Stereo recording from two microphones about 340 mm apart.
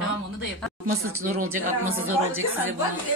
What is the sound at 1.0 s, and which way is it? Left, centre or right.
Speech, right.